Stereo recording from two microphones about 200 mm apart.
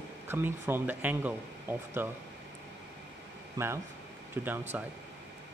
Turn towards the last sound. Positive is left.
turn(degrees=-10)  # may be behind; listen again after turning